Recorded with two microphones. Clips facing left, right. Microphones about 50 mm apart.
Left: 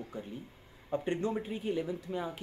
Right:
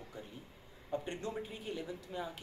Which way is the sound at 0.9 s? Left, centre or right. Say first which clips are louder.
Left 7 dB; left.